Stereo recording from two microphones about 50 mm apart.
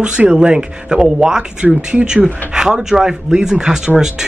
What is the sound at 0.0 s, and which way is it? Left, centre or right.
Speech, right.